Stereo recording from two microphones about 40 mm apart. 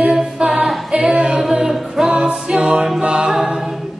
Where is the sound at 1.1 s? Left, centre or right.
Right.